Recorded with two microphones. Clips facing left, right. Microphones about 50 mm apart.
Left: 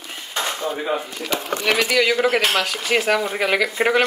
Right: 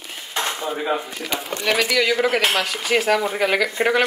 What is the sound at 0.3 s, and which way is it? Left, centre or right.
Speech, centre.